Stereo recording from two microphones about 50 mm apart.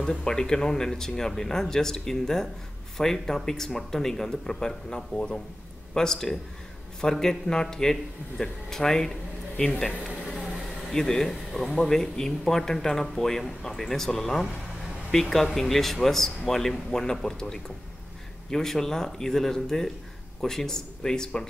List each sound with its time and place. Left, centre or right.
0.0 s speech: centre
10.9 s speech: centre